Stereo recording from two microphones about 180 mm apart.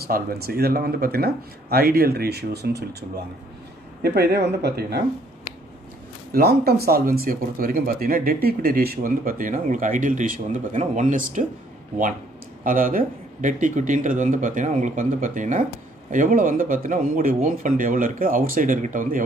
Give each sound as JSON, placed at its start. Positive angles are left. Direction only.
{"t": 0.0, "sound": "speech", "side_deg": -55}
{"t": 6.3, "sound": "speech", "side_deg": -60}
{"t": 12.6, "sound": "speech", "side_deg": -50}